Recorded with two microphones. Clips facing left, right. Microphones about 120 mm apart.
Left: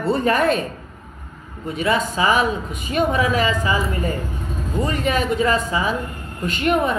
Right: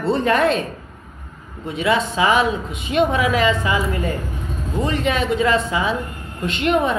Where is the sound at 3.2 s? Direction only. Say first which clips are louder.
Right 2 dB; centre (ahead or behind).